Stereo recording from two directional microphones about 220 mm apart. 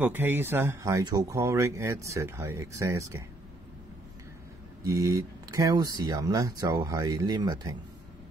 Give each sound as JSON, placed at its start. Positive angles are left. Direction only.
{"t": 0.0, "sound": "speech", "side_deg": -10}
{"t": 4.8, "sound": "speech", "side_deg": -15}